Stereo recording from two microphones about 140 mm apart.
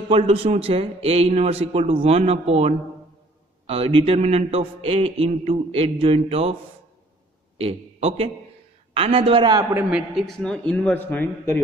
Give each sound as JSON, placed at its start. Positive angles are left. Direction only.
{"t": 0.1, "sound": "a man's voice", "side_deg": -40}
{"t": 7.5, "sound": "a man's voice", "side_deg": -45}
{"t": 9.8, "sound": "a man's voice", "side_deg": -5}